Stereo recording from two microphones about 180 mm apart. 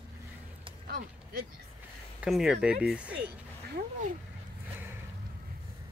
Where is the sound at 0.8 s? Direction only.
55° right (ahead or behind).